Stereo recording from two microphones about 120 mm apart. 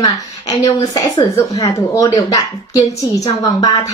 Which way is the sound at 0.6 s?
30° left (ahead or behind).